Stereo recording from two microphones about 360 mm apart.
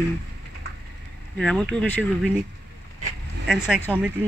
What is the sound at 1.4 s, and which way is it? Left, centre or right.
Speech, centre.